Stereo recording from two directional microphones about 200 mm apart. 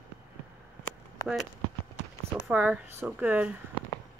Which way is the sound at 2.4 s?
10° right (ahead or behind).